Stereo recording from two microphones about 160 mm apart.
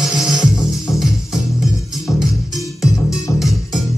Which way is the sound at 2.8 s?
20° left (ahead or behind).